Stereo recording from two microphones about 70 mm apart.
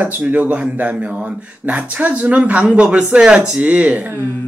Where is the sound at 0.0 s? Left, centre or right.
Right.